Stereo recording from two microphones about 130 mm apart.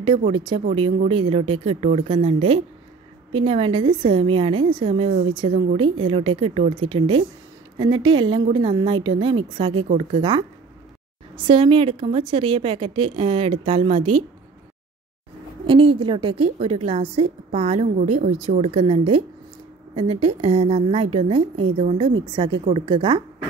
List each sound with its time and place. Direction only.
0.0 s a woman's voice: 40° right (ahead or behind)
11.4 s a woman's voice: 40° right (ahead or behind)
15.6 s a woman's voice: 45° right (ahead or behind)
16.5 s a woman's voice: 55° right (ahead or behind)